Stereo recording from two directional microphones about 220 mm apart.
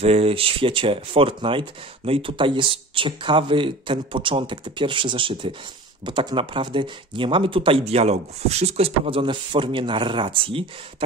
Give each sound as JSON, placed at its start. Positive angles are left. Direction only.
{"t": 0.0, "sound": "speech", "side_deg": -25}